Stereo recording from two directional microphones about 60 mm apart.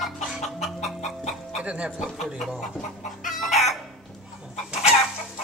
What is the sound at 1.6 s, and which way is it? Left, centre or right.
Music, centre.